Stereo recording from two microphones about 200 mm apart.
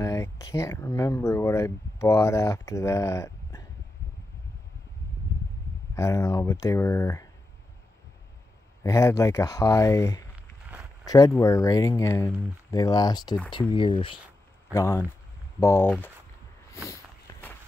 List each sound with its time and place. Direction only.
0.0 s speech: 15° left (ahead or behind)
5.9 s speech: 15° left (ahead or behind)
8.8 s speech: 15° left (ahead or behind)
14.7 s speech: 15° left (ahead or behind)
16.9 s walk: 10° left (ahead or behind)